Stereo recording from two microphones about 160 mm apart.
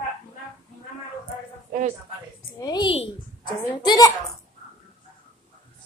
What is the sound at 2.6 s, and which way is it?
A child's voice, 30° left (ahead or behind).